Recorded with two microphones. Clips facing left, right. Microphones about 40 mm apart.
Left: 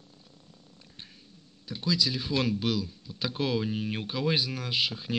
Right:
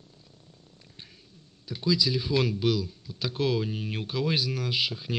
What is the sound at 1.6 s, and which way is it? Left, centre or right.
Speech, centre.